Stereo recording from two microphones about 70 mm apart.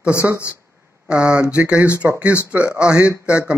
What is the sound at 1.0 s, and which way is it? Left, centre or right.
Speech, centre.